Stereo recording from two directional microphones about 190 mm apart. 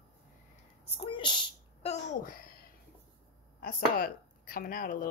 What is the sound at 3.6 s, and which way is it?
A woman's voice, 50° left (ahead or behind).